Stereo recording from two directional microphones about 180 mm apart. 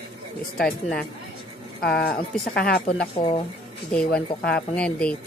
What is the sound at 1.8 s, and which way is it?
A woman's voice, 60° left (ahead or behind).